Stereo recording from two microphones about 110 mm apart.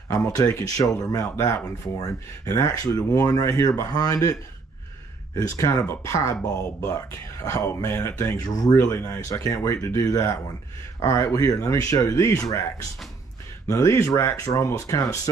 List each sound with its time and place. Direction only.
0.1 s speech: 30° left (ahead or behind)
13.7 s speech: 25° left (ahead or behind)